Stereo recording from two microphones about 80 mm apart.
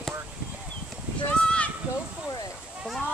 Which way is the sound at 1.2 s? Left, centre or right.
Centre.